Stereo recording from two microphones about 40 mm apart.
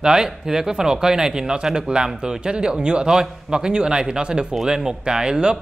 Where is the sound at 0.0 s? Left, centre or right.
Centre.